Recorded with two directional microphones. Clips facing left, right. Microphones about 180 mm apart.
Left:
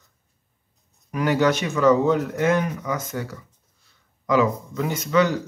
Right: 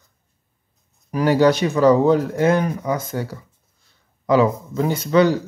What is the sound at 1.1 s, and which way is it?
A man's voice, 35° right (ahead or behind).